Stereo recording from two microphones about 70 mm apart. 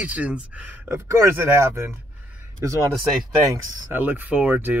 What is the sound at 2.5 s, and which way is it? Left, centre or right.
Speech, right.